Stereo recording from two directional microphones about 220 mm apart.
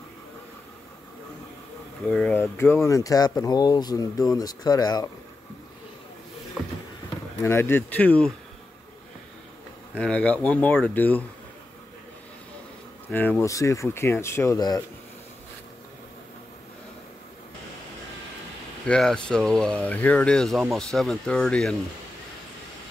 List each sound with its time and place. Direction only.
2.0 s speech: 5° left (ahead or behind)
7.4 s speech: 10° left (ahead or behind)
9.9 s speech: 5° left (ahead or behind)
13.1 s speech: 10° left (ahead or behind)
18.9 s speech: 5° left (ahead or behind)